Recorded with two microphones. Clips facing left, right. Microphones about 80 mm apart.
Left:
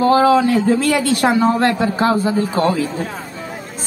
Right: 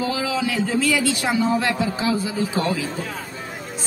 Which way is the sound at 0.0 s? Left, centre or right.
Left.